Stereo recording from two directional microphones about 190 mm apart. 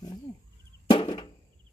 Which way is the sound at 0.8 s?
25° left (ahead or behind).